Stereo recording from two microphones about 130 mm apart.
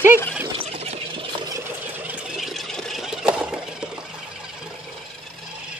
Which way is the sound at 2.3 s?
Centre (ahead or behind).